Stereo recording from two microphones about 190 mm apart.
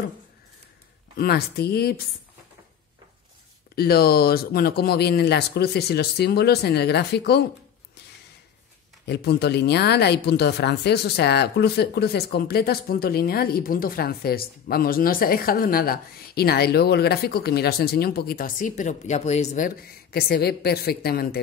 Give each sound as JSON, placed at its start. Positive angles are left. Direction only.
{"t": 1.1, "sound": "a woman's voice", "side_deg": 55}
{"t": 3.7, "sound": "a woman's voice", "side_deg": 55}
{"t": 9.0, "sound": "a woman's voice", "side_deg": 60}